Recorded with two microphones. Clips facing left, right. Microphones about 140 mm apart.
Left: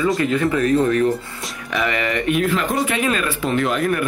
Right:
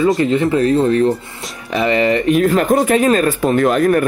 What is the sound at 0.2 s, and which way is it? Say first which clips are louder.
Speech: right 4 dB; 30° right (ahead or behind).